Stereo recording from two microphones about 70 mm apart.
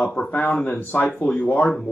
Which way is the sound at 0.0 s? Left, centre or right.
Centre.